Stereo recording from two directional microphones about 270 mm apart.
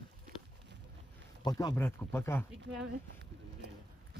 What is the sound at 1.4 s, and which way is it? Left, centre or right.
Speech, centre.